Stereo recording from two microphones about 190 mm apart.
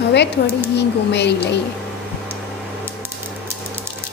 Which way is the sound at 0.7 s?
65° left (ahead or behind).